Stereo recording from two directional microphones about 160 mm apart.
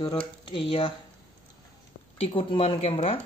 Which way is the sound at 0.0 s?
30° left (ahead or behind).